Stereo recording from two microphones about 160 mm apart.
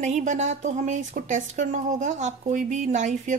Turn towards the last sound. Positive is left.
turn(degrees=-50)  # may be behind; listen again after turning